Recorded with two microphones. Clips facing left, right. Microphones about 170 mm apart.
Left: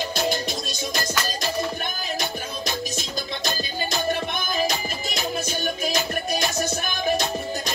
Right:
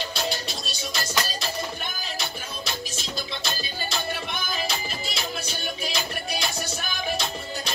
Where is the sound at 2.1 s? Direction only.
45° left (ahead or behind).